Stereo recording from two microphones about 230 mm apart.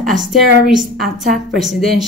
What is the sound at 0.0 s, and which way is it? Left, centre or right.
A woman's voice, centre.